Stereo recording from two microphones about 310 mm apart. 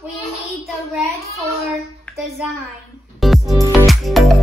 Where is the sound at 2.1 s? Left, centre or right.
Centre.